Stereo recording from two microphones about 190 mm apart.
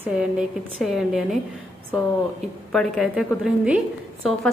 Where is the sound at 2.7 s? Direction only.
Centre (ahead or behind).